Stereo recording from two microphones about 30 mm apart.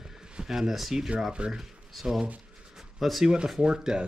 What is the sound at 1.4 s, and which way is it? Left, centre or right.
Speech, right.